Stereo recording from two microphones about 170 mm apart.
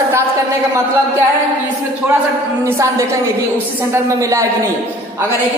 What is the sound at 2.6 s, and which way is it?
A woman's voice, 15° right (ahead or behind).